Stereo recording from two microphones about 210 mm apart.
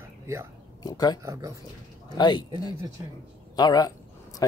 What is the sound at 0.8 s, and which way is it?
Speech, 20° left (ahead or behind).